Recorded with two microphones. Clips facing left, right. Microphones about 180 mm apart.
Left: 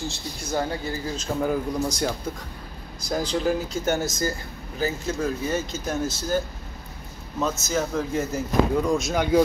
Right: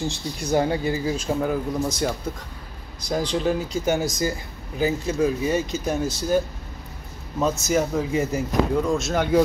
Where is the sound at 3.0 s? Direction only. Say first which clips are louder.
Right 2 dB; 5° left (ahead or behind).